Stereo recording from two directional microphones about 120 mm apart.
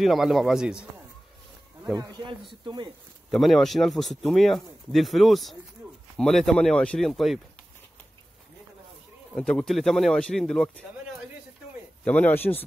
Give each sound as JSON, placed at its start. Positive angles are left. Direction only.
{"t": 0.0, "sound": "speech", "side_deg": 0}
{"t": 2.0, "sound": "a man's voice", "side_deg": -35}
{"t": 3.3, "sound": "speech", "side_deg": 0}
{"t": 9.3, "sound": "speech", "side_deg": 5}
{"t": 12.0, "sound": "speech", "side_deg": 10}